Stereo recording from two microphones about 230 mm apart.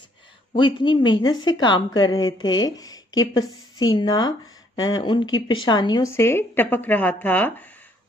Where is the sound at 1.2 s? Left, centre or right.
Left.